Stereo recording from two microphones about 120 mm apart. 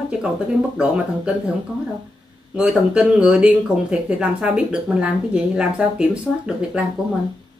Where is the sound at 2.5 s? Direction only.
10° right (ahead or behind).